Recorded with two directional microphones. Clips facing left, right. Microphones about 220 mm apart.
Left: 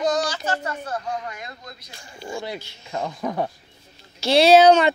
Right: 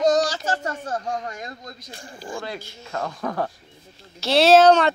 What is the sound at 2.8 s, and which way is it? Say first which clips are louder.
Speech: left 1 dB; 10° left (ahead or behind).